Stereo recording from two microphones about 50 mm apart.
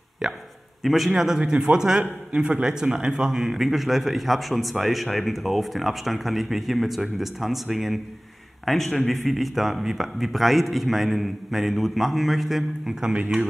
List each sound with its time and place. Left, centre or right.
0.2 s a man's voice: centre
13.1 s a man's voice: right